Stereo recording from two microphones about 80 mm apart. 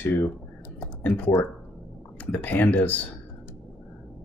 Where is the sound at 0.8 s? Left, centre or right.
Left.